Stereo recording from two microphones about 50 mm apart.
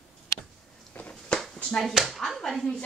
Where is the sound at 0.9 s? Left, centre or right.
Left.